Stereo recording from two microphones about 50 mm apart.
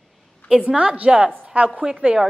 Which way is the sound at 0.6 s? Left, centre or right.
Right.